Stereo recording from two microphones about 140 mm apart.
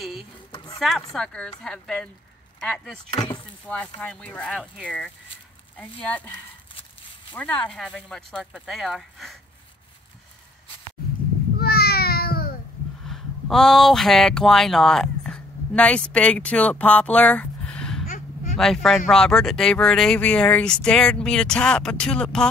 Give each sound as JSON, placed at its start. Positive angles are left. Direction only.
{"t": 0.5, "sound": "a sound", "side_deg": 30}
{"t": 0.7, "sound": "speech", "side_deg": 0}
{"t": 3.2, "sound": "chop", "side_deg": 35}
{"t": 3.6, "sound": "speech", "side_deg": 10}
{"t": 5.8, "sound": "speech", "side_deg": 10}
{"t": 7.3, "sound": "speech", "side_deg": 10}
{"t": 11.5, "sound": "a sound", "side_deg": 90}
{"t": 13.0, "sound": "speech", "side_deg": 0}
{"t": 18.0, "sound": "a sound", "side_deg": 70}
{"t": 18.6, "sound": "speech", "side_deg": 5}